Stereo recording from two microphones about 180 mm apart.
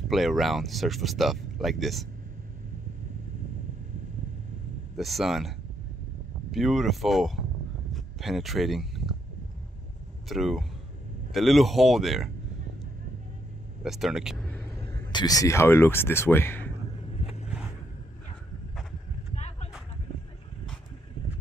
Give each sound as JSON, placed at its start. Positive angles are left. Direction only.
{"t": 0.1, "sound": "speech", "side_deg": 0}
{"t": 4.9, "sound": "speech", "side_deg": 0}
{"t": 6.5, "sound": "speech", "side_deg": 0}
{"t": 7.9, "sound": "a sound", "side_deg": 0}
{"t": 10.2, "sound": "speech", "side_deg": 0}
{"t": 13.8, "sound": "speech", "side_deg": 0}
{"t": 14.5, "sound": "a sound", "side_deg": 10}
{"t": 15.1, "sound": "speech", "side_deg": 20}
{"t": 17.2, "sound": "vehicle", "side_deg": 35}
{"t": 19.3, "sound": "a sound", "side_deg": 40}